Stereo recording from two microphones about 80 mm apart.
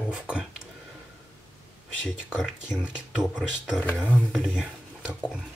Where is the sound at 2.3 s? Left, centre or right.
Centre.